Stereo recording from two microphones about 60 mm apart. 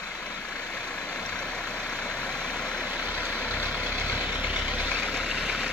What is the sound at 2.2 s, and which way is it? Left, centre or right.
Vehicle, centre.